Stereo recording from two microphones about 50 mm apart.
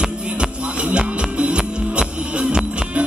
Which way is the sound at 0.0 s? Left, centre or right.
Centre.